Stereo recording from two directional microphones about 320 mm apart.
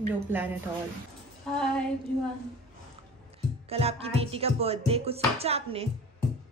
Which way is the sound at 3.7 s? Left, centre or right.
Centre.